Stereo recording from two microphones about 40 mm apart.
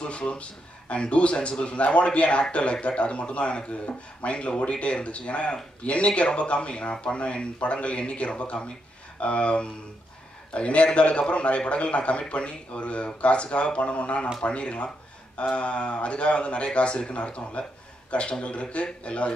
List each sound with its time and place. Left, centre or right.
0.0 s a man's voice: left